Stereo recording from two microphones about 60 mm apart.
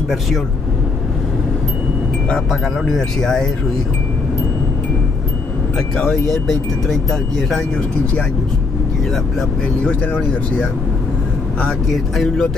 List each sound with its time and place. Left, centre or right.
2.3 s speech: centre
5.8 s speech: centre
9.8 s speech: left
11.6 s speech: centre